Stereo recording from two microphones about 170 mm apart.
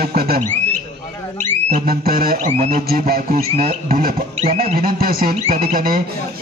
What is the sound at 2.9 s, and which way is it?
Music, 60° right (ahead or behind).